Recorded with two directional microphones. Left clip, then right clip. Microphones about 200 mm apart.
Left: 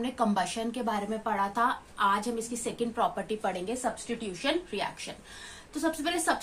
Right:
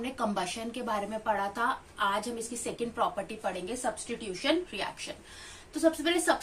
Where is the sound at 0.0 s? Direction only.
35° left (ahead or behind).